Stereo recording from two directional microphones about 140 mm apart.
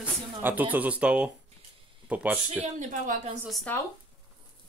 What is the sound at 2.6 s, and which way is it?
Speech, 70° right (ahead or behind).